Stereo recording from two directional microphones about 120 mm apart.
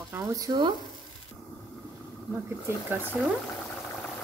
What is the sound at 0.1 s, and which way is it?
Speech, 30° right (ahead or behind).